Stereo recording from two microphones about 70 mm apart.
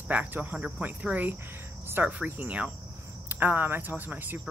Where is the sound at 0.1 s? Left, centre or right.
Right.